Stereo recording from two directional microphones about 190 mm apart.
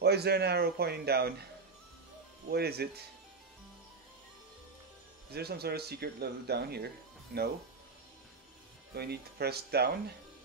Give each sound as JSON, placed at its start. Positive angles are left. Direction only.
{"t": 0.0, "sound": "speech", "side_deg": -60}
{"t": 2.5, "sound": "speech", "side_deg": -55}
{"t": 5.3, "sound": "speech", "side_deg": -55}
{"t": 8.9, "sound": "speech", "side_deg": -60}